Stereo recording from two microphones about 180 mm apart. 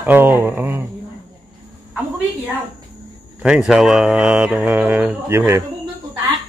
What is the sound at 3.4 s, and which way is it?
Speech, 5° right (ahead or behind).